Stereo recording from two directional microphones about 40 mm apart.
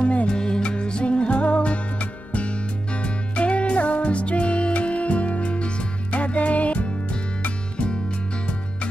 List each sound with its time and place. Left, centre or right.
0.0 s music: left
0.3 s music: left